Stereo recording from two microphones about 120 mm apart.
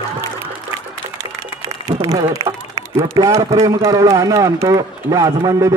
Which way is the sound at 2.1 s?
30° right (ahead or behind).